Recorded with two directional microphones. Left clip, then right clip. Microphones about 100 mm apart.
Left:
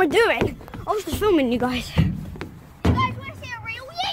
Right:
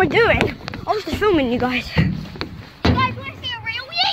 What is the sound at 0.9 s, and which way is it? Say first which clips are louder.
Speech: right 3 dB; 35° left (ahead or behind).